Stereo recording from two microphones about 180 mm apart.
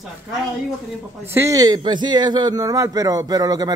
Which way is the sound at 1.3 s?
15° right (ahead or behind).